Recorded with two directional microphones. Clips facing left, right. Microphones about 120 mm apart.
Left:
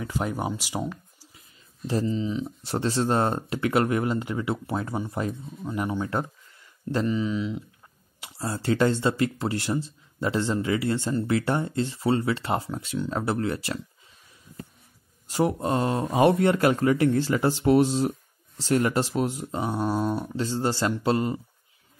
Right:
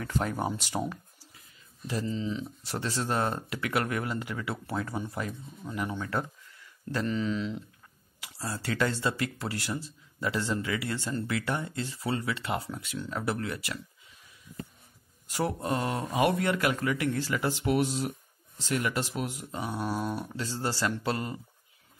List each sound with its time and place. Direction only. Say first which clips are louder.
0.0 s speech: left 2 dB; 15° left (ahead or behind)
1.9 s speech: left 6 dB; 25° left (ahead or behind)
2.4 s speech: left 7 dB; 30° left (ahead or behind)
7.1 s speech: left 4 dB; 10° left (ahead or behind)
8.2 s speech: left 5 dB; 30° left (ahead or behind)
15.2 s speech: left 6 dB; 25° left (ahead or behind)